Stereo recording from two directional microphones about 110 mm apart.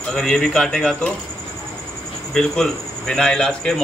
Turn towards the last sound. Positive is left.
turn(degrees=5)  # may be behind; listen again after turning